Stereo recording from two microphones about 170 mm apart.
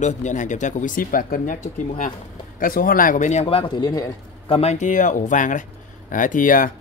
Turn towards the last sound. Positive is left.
turn(degrees=50)  # may be behind; listen again after turning